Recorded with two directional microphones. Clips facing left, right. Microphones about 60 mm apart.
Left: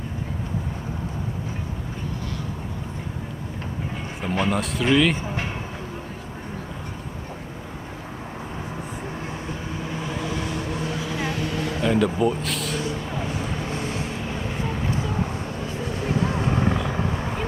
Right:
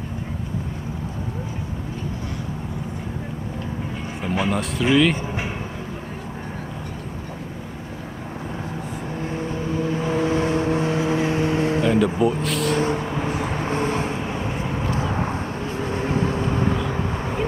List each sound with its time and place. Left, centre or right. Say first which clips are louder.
4.2 s speech: even; centre
9.8 s vehicle: right 7 dB; right
11.9 s speech: right 2 dB; centre
12.7 s vehicle: right 6 dB; right